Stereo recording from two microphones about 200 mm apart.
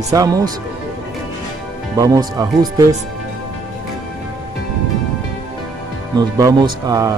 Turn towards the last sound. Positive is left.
turn(degrees=-20)  # may be behind; listen again after turning